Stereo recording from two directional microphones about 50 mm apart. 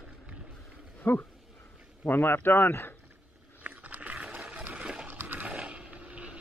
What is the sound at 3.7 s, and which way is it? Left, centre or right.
Biting, right.